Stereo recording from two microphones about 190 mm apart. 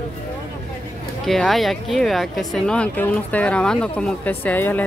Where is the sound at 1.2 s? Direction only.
Centre (ahead or behind).